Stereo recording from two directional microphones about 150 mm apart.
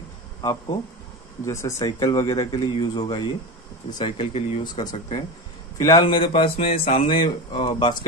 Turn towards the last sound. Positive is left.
turn(degrees=35)  # may be behind; listen again after turning